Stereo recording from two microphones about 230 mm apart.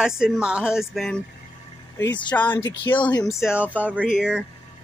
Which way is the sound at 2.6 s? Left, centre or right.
Left.